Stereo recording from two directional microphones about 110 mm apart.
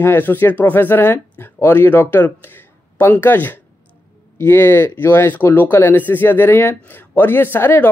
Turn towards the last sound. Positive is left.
turn(degrees=20)  # may be behind; listen again after turning